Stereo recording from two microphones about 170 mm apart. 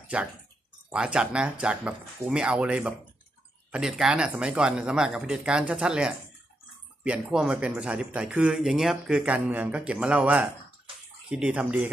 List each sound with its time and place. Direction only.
0.1 s speech: 5° right (ahead or behind)